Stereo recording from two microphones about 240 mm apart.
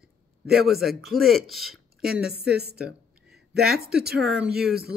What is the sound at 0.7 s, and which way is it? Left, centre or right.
Speech, centre.